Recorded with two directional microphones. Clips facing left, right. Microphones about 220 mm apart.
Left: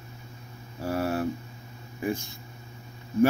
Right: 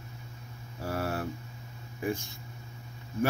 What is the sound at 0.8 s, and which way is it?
Speech, 15° left (ahead or behind).